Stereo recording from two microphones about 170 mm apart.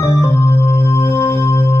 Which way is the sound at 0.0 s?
15° left (ahead or behind).